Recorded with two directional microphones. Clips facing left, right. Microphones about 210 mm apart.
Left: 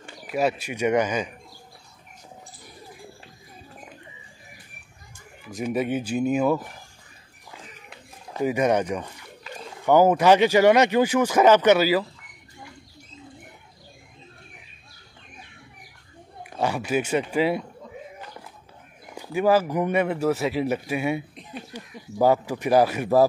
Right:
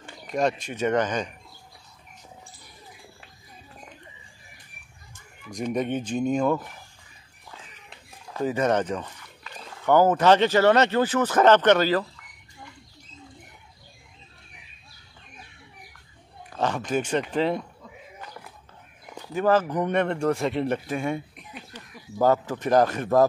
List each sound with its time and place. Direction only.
0.2 s speech: 5° left (ahead or behind)
5.5 s speech: 5° left (ahead or behind)
8.3 s speech: 10° left (ahead or behind)
16.4 s speech: 10° left (ahead or behind)
19.1 s speech: 10° left (ahead or behind)
21.4 s a sound: 30° left (ahead or behind)
21.7 s speech: 10° left (ahead or behind)